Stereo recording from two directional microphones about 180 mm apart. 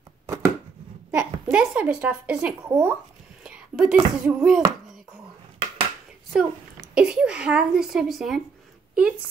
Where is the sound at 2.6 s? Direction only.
15° right (ahead or behind).